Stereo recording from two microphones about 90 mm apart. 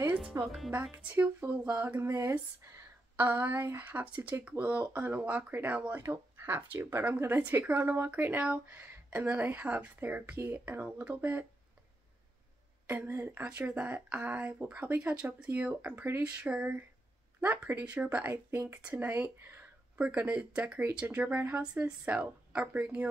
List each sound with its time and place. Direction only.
0.3 s speech: 40° right (ahead or behind)
0.9 s a woman's voice: 25° right (ahead or behind)
12.8 s a woman's voice: 25° right (ahead or behind)